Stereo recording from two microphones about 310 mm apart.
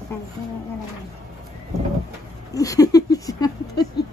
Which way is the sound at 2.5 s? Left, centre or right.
Centre.